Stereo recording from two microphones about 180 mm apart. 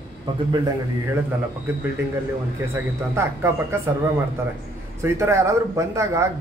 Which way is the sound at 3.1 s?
15° right (ahead or behind).